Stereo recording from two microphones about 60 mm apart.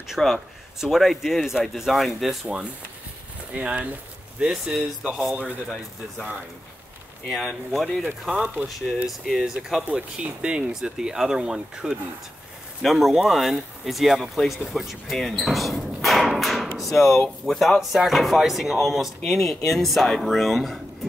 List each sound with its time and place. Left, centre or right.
0.2 s speech: centre
2.4 s speech: right
7.2 s speech: centre
12.8 s speech: centre
15.1 s a sound: centre
17.5 s speech: centre